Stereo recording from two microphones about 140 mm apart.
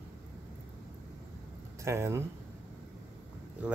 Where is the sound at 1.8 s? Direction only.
20° right (ahead or behind).